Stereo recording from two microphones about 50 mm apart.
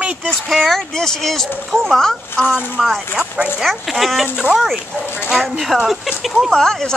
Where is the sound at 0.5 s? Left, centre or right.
Centre.